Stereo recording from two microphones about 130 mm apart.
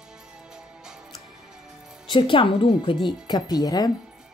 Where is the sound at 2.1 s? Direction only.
40° left (ahead or behind).